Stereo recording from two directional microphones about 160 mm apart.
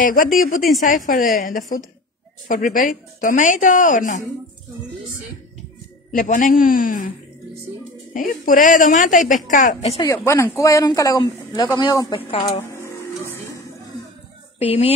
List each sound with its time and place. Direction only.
0.0 s a woman's voice: 55° left (ahead or behind)
6.1 s a woman's voice: 55° left (ahead or behind)
8.1 s a woman's voice: 60° left (ahead or behind)
10.1 s speech: 15° left (ahead or behind)
12.3 s speech: 35° left (ahead or behind)
13.3 s music: 20° left (ahead or behind)
14.6 s speech: 40° left (ahead or behind)